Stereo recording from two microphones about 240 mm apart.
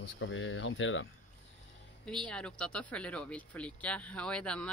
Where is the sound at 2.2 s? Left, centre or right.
Centre.